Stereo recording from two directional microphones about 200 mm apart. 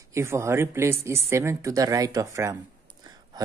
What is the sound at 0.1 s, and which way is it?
Speech, 15° right (ahead or behind).